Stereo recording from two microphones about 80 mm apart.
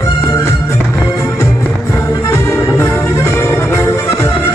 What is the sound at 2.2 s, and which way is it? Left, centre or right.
Music, left.